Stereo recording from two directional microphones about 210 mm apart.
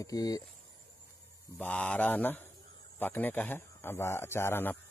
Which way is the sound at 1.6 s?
10° left (ahead or behind).